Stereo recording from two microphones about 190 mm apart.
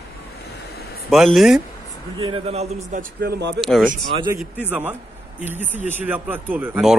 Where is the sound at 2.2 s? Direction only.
25° right (ahead or behind).